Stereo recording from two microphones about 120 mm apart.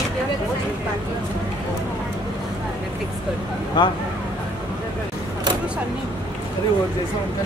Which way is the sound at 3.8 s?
40° left (ahead or behind).